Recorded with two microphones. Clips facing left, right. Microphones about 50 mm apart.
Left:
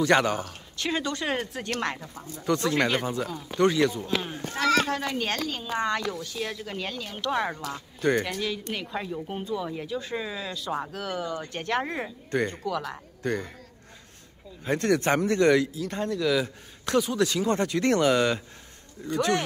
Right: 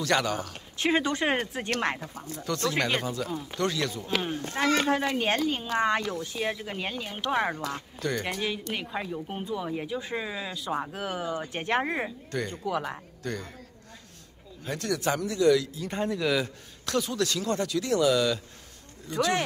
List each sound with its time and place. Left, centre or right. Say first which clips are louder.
0.0 s speech: left 4 dB; left
0.7 s speech: right 3 dB; right
2.1 s speech: left 5 dB; left
4.0 s speech: even; centre
8.7 s speech: left 1 dB; centre
10.9 s speech: even; centre
12.3 s speech: left 5 dB; left
12.6 s speech: even; centre
13.2 s speech: left 6 dB; left
14.6 s speech: left 6 dB; left
15.7 s speech: left 1 dB; centre
17.0 s speech: left 4 dB; centre
17.7 s speech: left 1 dB; left